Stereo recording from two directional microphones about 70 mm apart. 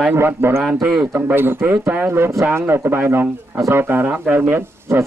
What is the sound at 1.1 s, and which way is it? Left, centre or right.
Speech, right.